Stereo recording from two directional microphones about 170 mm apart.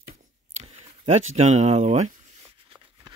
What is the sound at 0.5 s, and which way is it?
Speech, 40° right (ahead or behind).